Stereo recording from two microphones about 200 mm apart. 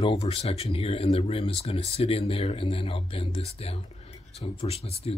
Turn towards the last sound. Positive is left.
turn(degrees=30)  # may be behind; listen again after turning